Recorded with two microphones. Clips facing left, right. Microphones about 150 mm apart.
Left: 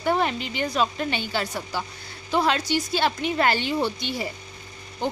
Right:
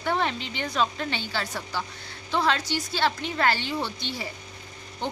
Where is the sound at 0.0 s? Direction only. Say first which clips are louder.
Left 3 dB; 10° left (ahead or behind).